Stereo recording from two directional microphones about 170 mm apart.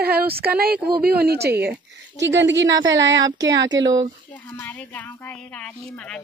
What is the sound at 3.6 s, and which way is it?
Speech, 25° right (ahead or behind).